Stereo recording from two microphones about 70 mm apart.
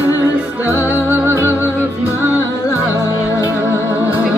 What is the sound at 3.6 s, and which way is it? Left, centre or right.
Music, right.